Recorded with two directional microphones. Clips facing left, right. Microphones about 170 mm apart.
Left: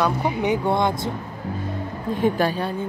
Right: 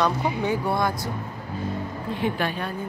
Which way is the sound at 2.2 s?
40° left (ahead or behind).